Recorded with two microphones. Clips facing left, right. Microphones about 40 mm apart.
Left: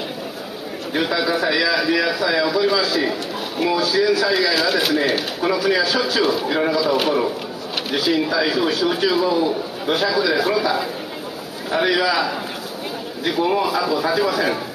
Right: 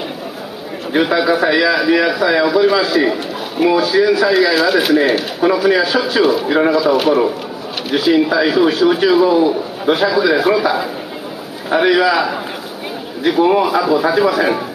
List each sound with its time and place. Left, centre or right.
0.9 s a man's voice: centre
6.2 s speech: centre
7.9 s a man's voice: centre